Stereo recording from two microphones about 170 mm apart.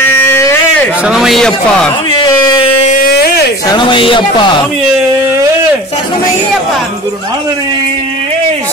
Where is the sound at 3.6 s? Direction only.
25° left (ahead or behind).